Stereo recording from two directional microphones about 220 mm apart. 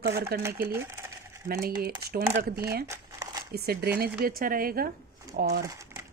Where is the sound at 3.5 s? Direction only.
45° right (ahead or behind).